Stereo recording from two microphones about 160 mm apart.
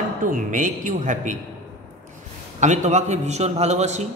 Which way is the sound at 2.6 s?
50° right (ahead or behind).